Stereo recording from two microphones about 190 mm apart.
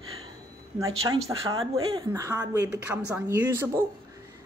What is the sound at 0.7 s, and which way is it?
A woman's voice, 20° right (ahead or behind).